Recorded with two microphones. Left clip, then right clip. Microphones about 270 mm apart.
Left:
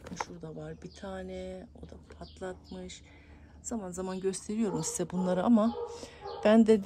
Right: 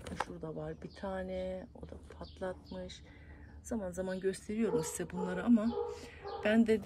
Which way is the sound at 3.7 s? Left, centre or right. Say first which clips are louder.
Left 1 dB; centre.